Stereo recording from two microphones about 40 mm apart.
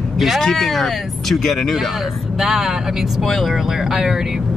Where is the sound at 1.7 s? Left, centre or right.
Centre.